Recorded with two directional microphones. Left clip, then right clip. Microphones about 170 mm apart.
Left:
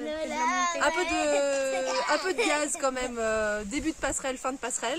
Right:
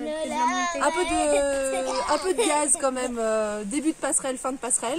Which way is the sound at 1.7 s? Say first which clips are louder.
Right 2 dB; centre (ahead or behind).